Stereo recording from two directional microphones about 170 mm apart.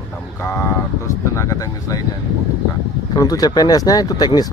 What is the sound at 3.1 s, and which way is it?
Speech, 20° left (ahead or behind).